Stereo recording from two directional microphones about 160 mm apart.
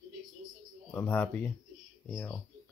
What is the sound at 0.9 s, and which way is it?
Speech, 10° left (ahead or behind).